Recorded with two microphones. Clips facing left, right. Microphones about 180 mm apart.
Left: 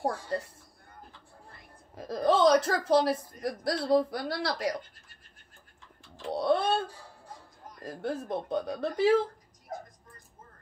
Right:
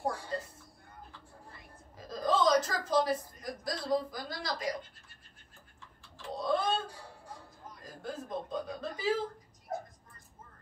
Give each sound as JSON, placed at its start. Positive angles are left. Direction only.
{"t": 2.0, "sound": "a woman's voice", "side_deg": 65}
{"t": 6.2, "sound": "bird", "side_deg": 70}
{"t": 7.8, "sound": "speech", "side_deg": 70}